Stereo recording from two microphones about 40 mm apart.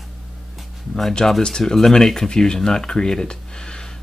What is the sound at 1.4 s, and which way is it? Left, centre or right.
Speech, centre.